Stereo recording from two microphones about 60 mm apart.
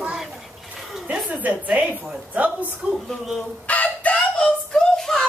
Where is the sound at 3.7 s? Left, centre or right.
Left; by 5.2 s centre.